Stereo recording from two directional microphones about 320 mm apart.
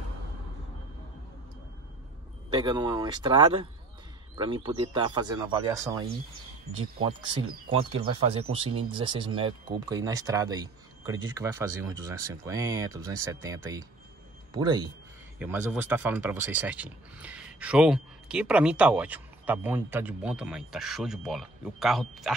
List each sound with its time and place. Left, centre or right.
2.5 s speech: centre